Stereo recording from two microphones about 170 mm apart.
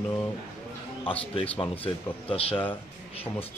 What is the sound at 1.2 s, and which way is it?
Speech, 35° left (ahead or behind).